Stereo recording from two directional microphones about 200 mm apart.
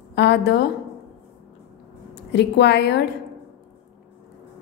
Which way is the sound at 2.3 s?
55° left (ahead or behind).